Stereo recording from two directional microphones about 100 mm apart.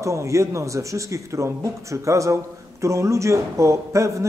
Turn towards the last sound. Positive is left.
turn(degrees=-30)  # may be behind; listen again after turning